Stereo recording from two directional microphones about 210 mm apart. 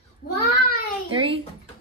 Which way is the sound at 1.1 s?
25° right (ahead or behind).